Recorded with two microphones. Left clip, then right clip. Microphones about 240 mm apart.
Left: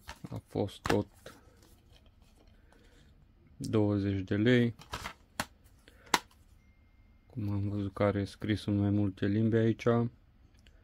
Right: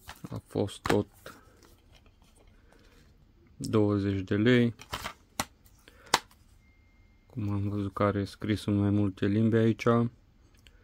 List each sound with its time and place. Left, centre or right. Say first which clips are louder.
0.0 s a sound: right 2 dB; centre
3.6 s typewriter: right 3 dB; centre
7.3 s speech: right 3 dB; centre